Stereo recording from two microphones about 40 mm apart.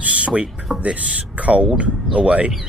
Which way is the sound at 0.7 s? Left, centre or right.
Centre.